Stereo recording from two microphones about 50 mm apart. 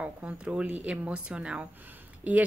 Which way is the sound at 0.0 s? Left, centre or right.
Right.